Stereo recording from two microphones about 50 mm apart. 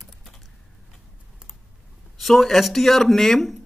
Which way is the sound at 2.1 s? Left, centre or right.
Centre.